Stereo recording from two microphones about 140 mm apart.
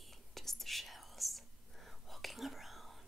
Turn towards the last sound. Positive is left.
turn(degrees=0)  # may be behind; listen again after turning